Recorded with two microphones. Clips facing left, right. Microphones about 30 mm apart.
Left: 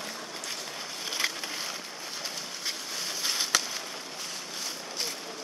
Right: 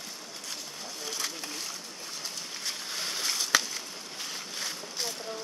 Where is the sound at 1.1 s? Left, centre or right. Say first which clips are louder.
Left 5 dB; left.